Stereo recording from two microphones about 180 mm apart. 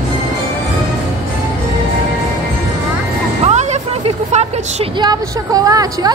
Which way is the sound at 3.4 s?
40° right (ahead or behind).